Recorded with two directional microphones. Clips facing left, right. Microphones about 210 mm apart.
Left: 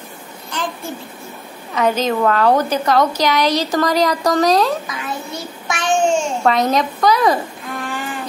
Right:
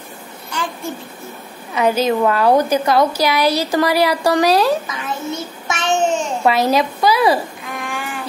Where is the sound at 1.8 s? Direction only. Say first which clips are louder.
Right 1 dB; 10° right (ahead or behind).